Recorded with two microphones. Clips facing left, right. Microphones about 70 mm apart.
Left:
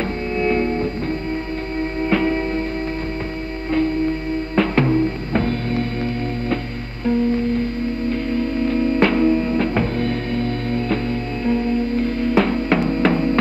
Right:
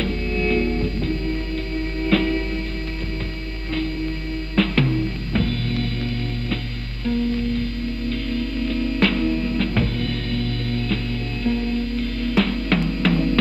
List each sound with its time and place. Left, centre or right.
0.4 s music: left
2.0 s music: left
4.6 s music: left
8.1 s music: left